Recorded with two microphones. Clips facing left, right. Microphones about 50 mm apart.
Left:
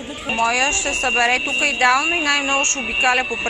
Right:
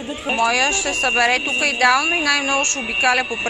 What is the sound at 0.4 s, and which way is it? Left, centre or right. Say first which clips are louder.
Speech: even; left.